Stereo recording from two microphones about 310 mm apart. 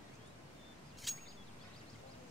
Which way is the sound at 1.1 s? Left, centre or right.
Centre.